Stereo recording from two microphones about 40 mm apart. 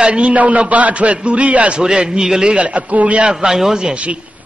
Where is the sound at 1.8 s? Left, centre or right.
Centre.